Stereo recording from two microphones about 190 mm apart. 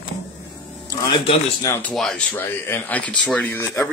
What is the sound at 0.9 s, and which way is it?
Speech, 25° left (ahead or behind).